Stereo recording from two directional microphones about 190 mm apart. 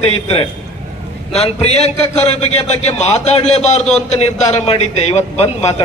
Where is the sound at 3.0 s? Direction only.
35° left (ahead or behind).